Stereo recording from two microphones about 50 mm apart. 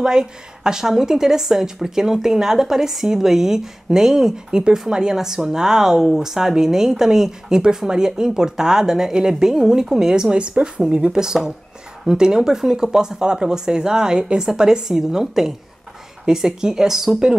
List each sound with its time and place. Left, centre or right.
0.0 s a woman's voice: centre